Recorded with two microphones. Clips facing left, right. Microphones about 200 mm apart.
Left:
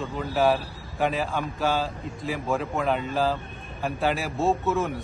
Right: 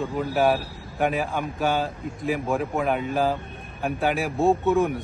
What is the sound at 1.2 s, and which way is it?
Speech, 15° right (ahead or behind).